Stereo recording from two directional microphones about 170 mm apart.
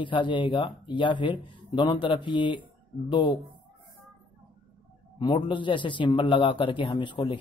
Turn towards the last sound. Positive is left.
turn(degrees=30)  # may be behind; listen again after turning